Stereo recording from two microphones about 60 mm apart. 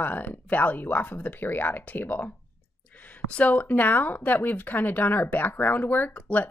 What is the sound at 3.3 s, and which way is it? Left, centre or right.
Speech, left.